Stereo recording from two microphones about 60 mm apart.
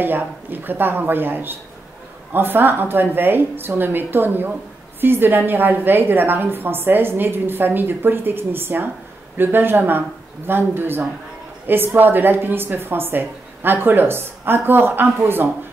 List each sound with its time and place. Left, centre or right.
0.0 s a woman's voice: right